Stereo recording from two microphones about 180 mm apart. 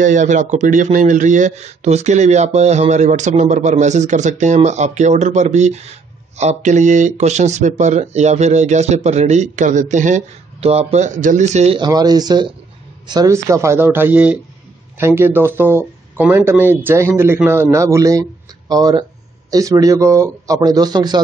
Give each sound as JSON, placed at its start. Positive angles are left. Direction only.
{"t": 0.0, "sound": "speech", "side_deg": -45}
{"t": 11.8, "sound": "a man's voice", "side_deg": -20}